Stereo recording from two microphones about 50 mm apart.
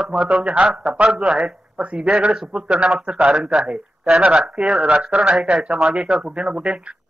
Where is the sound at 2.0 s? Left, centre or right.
Centre.